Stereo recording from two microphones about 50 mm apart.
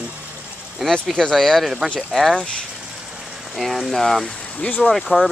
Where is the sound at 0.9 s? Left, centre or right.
Centre.